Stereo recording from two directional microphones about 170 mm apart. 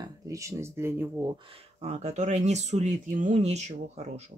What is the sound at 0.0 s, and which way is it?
Speech, 20° right (ahead or behind).